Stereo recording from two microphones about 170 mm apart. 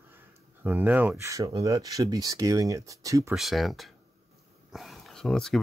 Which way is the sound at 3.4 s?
Centre (ahead or behind).